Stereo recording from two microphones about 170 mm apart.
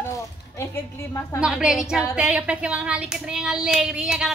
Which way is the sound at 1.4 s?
5° right (ahead or behind).